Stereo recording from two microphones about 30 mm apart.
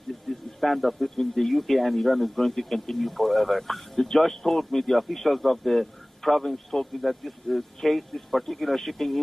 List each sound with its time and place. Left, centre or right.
0.3 s a sound: centre
1.1 s a man's voice: centre
3.9 s a man's voice: centre